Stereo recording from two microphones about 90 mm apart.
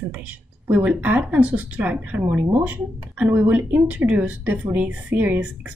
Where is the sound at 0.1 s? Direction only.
15° right (ahead or behind).